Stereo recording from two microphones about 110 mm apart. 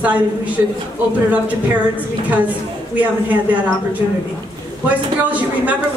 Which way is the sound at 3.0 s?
15° right (ahead or behind).